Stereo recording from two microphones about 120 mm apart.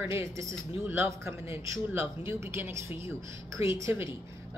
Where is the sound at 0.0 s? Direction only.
20° right (ahead or behind).